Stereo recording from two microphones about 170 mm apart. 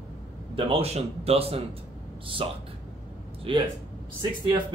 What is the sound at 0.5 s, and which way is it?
A man's voice, 35° right (ahead or behind).